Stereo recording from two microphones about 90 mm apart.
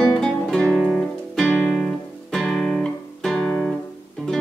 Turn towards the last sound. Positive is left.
turn(degrees=10)  # may be behind; listen again after turning